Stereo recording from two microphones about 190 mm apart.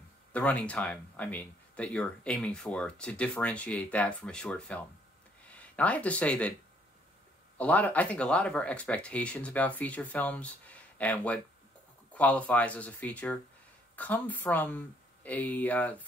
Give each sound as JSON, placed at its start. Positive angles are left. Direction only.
{"t": 0.3, "sound": "speech", "side_deg": 5}
{"t": 7.5, "sound": "speech", "side_deg": 10}